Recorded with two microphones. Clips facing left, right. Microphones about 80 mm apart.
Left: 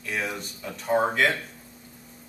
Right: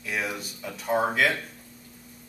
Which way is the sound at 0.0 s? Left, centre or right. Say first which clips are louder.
Even; centre.